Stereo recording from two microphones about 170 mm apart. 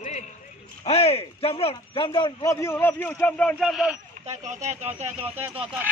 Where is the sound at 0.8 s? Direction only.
35° left (ahead or behind); by 3.6 s 10° left (ahead or behind).